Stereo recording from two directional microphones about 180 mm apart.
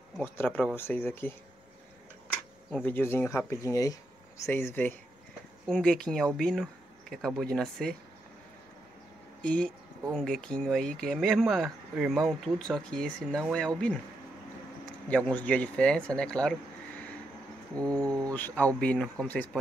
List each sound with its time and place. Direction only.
0.2 s speech: 10° left (ahead or behind)
2.7 s speech: 10° left (ahead or behind)
9.4 s speech: 5° left (ahead or behind)
15.0 s speech: 5° left (ahead or behind)
16.4 s a sound: 5° left (ahead or behind)
17.7 s speech: 5° left (ahead or behind)